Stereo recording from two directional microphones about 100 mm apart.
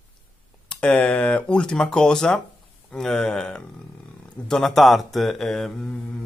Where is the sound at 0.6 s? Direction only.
10° left (ahead or behind).